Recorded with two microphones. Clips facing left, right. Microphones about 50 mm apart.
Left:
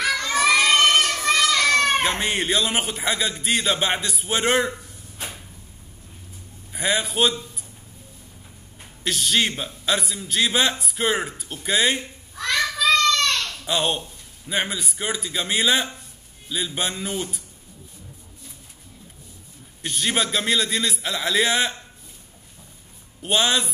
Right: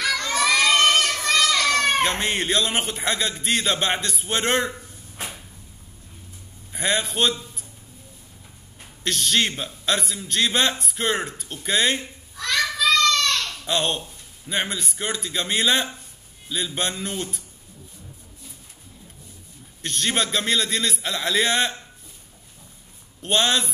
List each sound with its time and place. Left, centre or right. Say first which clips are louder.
0.2 s a sound: left 2 dB; centre
1.2 s children playing: left 1 dB; centre
1.5 s children playing: left 2 dB; centre
2.0 s a man's voice: left 1 dB; centre
4.7 s a sound: right 1 dB; right
6.7 s a man's voice: left 1 dB; centre
8.7 s a man's voice: even; centre
12.4 s child singing: even; left
13.7 s a man's voice: left 1 dB; centre
19.8 s a man's voice: even; centre
23.2 s a man's voice: even; centre